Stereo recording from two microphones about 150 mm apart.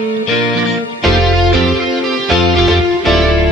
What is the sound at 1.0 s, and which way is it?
Music, centre (ahead or behind).